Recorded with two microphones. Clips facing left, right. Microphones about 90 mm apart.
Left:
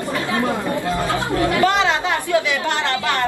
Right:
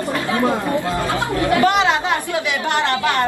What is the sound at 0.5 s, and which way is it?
Chatter, 20° right (ahead or behind).